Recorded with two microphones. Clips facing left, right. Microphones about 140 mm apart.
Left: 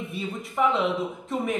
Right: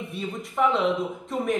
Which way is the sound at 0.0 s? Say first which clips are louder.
Even; centre (ahead or behind).